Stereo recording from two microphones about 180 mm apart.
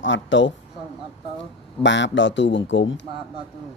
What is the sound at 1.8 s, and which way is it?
Speech, 90° left.